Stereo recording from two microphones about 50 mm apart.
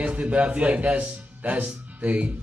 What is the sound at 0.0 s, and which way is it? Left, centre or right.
Speech, right.